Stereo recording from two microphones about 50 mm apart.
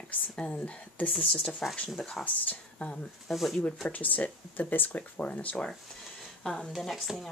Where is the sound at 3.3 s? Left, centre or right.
Centre.